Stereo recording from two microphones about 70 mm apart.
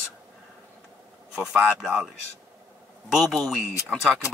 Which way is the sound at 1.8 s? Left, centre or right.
Centre.